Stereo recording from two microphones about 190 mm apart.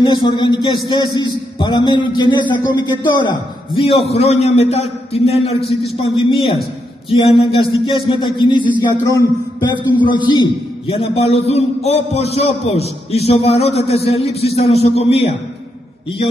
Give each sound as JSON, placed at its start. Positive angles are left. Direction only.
{"t": 0.0, "sound": "a man's voice", "side_deg": 25}